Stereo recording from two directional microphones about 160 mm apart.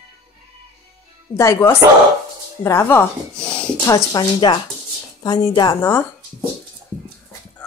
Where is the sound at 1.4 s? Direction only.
15° left (ahead or behind).